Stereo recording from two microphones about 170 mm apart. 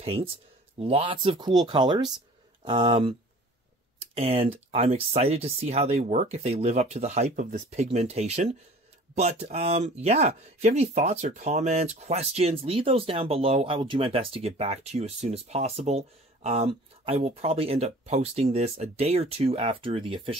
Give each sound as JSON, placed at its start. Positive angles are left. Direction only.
{"t": 0.0, "sound": "speech", "side_deg": -35}